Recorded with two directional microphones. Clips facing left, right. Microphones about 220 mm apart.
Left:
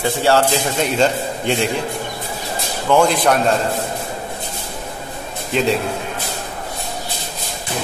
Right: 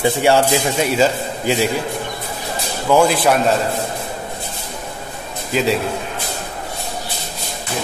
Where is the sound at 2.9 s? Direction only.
5° right (ahead or behind).